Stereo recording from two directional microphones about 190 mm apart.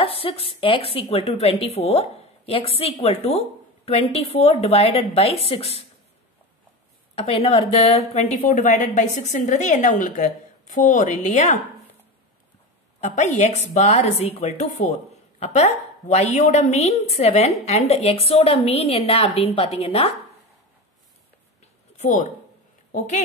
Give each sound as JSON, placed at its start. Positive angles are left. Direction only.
{"t": 0.0, "sound": "a woman's voice", "side_deg": 30}
{"t": 7.2, "sound": "a woman's voice", "side_deg": 30}
{"t": 13.0, "sound": "a woman's voice", "side_deg": 40}
{"t": 21.9, "sound": "speech", "side_deg": 40}